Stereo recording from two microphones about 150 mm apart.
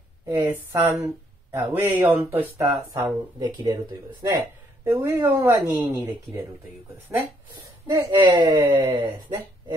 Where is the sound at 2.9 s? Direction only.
15° right (ahead or behind).